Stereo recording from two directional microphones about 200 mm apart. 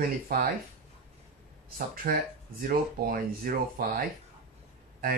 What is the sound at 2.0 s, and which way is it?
Speech, 45° right (ahead or behind).